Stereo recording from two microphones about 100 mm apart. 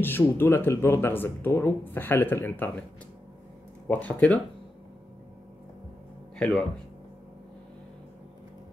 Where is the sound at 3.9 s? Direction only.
15° left (ahead or behind).